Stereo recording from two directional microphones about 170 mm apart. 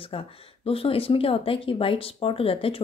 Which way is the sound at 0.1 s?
35° left (ahead or behind).